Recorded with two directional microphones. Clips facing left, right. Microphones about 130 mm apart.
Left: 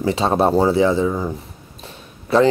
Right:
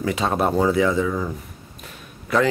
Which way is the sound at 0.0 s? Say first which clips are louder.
Left 4 dB; 30° left (ahead or behind).